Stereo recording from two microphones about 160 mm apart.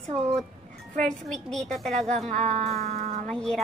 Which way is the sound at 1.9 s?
45° right (ahead or behind).